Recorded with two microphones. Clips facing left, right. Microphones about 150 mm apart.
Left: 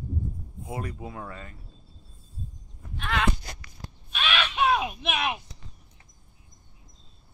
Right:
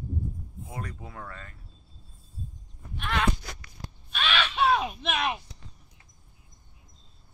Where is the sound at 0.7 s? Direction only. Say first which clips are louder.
Left 5 dB; 10° left (ahead or behind).